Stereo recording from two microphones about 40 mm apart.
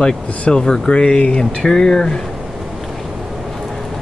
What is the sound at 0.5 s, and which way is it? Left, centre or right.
Speech, centre.